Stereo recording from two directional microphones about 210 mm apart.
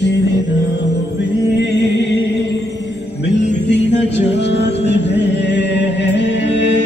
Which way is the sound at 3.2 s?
55° left (ahead or behind).